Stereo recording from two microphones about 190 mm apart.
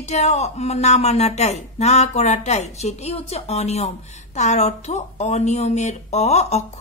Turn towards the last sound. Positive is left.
turn(degrees=35)  # may be behind; listen again after turning